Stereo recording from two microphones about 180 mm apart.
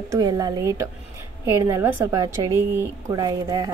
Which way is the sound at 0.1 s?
20° right (ahead or behind).